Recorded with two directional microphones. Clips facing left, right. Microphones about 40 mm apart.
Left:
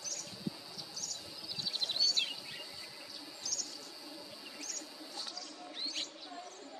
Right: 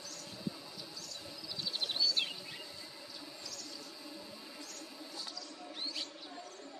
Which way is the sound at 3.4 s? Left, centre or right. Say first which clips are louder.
Left 8 dB; right.